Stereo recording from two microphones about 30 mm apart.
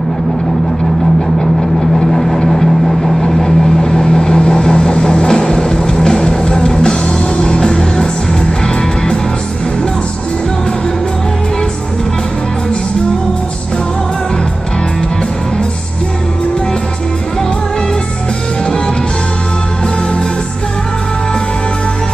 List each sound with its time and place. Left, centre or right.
2.0 s vehicle: centre; by 8.1 s left
8.6 s music: left